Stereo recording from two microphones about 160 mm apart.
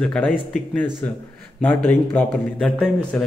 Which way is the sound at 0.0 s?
5° left (ahead or behind).